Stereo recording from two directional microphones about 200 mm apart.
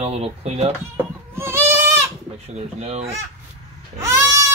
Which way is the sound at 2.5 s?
30° right (ahead or behind).